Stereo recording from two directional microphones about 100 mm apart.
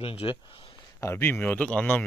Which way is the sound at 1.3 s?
15° left (ahead or behind).